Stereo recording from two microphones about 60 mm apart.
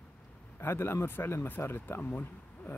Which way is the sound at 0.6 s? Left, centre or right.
Left.